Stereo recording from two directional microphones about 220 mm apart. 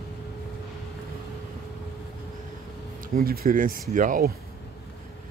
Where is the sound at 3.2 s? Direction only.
40° right (ahead or behind).